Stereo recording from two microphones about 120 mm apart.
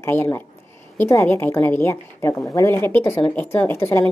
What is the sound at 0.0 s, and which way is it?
A woman's voice, 20° left (ahead or behind).